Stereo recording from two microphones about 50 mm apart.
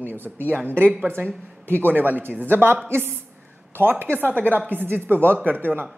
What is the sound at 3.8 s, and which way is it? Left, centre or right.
A woman's voice, right.